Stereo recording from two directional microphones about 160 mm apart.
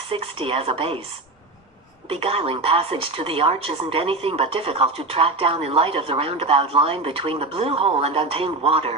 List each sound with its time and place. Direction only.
0.1 s a woman's voice: 35° right (ahead or behind)
2.0 s a woman's voice: 35° right (ahead or behind)